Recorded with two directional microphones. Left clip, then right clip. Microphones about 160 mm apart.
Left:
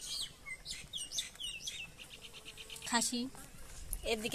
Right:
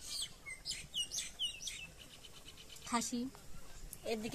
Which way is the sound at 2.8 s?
35° left (ahead or behind).